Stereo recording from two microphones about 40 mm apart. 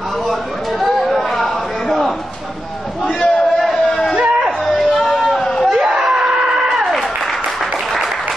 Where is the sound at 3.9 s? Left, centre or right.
Centre.